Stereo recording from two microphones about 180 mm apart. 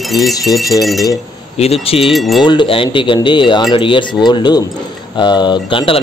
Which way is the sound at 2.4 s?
25° left (ahead or behind).